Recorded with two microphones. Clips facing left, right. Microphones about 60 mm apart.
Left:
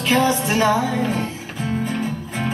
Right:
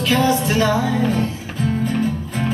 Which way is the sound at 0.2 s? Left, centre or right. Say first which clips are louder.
Right 1 dB; centre.